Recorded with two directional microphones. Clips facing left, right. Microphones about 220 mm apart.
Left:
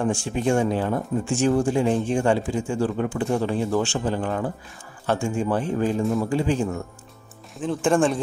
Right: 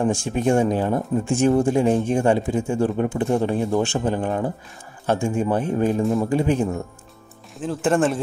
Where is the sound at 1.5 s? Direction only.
20° right (ahead or behind).